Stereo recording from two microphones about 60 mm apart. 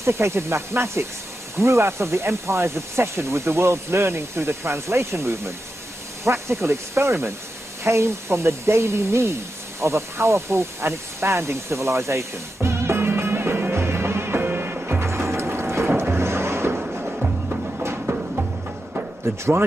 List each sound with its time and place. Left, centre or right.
0.0 s speech: right
15.0 s ratchet: right
16.0 s a sound: right
17.2 s music: right
19.2 s speech: right